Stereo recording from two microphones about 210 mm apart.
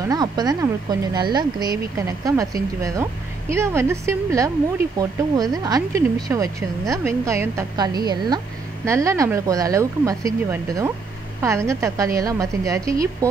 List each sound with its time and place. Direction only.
0.0 s speech: 20° right (ahead or behind)